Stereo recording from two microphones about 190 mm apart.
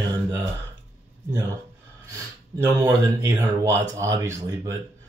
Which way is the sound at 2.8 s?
15° right (ahead or behind).